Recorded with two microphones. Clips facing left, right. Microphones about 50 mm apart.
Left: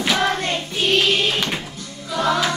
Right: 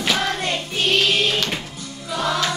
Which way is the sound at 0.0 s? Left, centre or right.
Centre.